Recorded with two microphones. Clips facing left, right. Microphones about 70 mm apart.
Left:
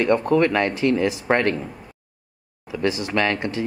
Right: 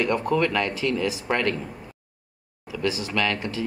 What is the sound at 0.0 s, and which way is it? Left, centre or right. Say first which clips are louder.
Speech: left 5 dB; left.